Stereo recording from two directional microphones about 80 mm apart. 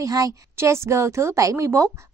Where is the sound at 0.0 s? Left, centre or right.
Right.